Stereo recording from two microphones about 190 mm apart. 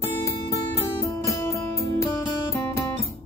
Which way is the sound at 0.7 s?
15° left (ahead or behind).